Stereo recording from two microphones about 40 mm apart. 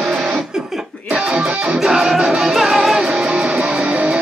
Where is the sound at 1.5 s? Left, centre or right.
Right.